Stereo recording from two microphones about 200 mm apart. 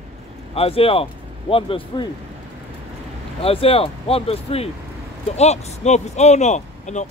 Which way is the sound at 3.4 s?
30° left (ahead or behind).